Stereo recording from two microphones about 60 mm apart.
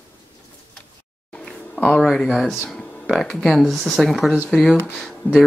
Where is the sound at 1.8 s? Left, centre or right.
Centre.